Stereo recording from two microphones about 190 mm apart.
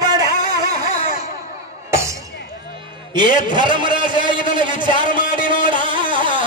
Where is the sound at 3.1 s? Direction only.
25° right (ahead or behind).